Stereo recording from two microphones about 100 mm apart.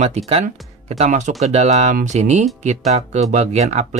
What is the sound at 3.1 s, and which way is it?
Speech, 90° right.